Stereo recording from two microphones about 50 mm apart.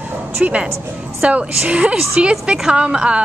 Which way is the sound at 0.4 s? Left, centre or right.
Right.